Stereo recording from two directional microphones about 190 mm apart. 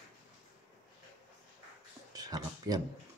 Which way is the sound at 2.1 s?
20° right (ahead or behind).